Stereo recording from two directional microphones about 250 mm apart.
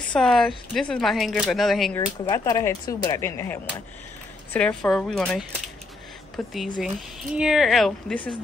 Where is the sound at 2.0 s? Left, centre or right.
Centre.